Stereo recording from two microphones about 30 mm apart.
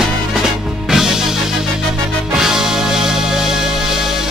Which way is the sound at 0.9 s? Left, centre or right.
Centre.